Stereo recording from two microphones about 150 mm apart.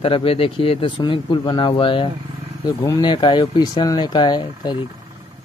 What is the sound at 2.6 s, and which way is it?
Speech, 25° left (ahead or behind).